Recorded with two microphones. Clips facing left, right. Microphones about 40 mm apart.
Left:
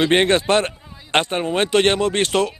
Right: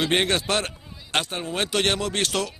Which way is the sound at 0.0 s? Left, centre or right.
Left.